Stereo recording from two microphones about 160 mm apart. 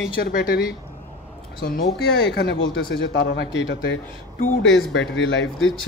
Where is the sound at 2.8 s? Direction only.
90° left.